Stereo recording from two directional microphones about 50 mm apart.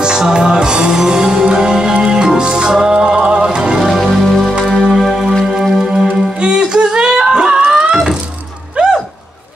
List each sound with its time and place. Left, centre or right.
0.0 s music: centre
3.8 s music: centre
8.8 s a sound: centre